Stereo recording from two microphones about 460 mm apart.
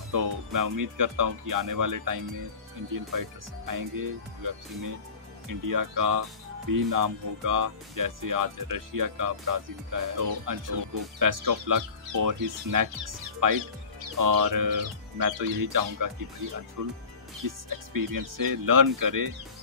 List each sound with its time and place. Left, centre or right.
0.1 s speech: right